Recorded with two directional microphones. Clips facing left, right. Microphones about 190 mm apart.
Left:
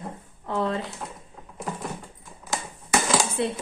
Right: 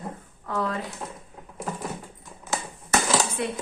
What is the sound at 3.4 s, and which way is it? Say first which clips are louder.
Speech: left 3 dB; 30° left (ahead or behind).